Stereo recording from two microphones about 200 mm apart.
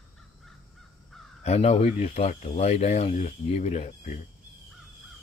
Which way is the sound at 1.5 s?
30° left (ahead or behind).